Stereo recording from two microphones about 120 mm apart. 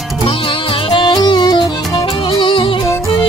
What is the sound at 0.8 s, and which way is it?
Music, 40° left (ahead or behind).